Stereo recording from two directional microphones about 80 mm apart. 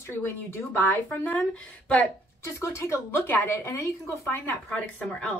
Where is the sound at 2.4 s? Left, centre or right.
Left.